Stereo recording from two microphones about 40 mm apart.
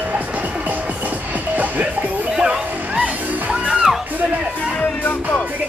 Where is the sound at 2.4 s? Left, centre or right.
Right.